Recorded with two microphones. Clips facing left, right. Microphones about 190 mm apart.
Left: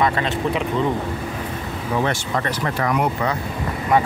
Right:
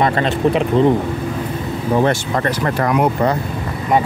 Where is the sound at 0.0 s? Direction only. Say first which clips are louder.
Right 5 dB; 35° right (ahead or behind).